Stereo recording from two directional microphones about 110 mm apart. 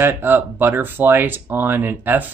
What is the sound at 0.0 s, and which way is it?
Speech, 20° right (ahead or behind).